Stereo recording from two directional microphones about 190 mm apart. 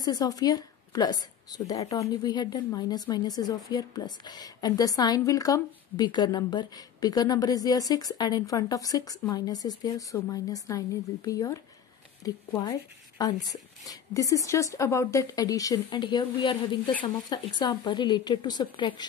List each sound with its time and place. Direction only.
0.0 s a woman's voice: 20° left (ahead or behind)